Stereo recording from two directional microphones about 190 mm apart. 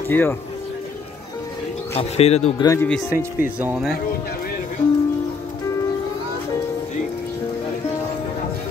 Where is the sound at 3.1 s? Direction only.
10° right (ahead or behind).